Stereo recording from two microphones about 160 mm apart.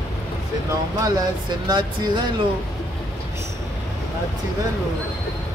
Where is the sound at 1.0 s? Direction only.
25° right (ahead or behind).